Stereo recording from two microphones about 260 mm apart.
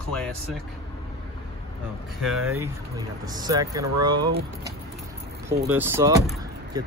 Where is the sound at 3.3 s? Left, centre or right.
Centre.